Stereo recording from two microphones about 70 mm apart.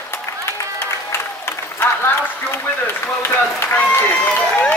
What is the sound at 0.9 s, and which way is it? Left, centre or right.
Applause, left.